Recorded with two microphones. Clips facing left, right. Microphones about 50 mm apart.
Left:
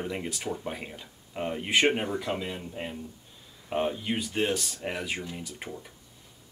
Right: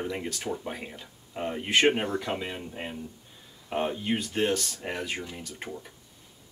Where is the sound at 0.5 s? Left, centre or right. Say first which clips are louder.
Even; centre.